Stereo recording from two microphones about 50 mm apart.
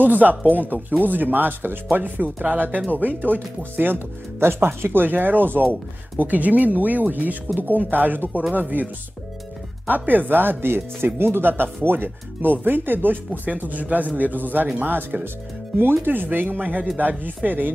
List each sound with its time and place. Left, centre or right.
0.0 s speech: right
9.8 s speech: right